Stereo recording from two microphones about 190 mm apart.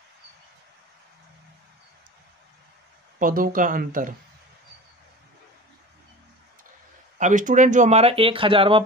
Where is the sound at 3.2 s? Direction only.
45° right (ahead or behind).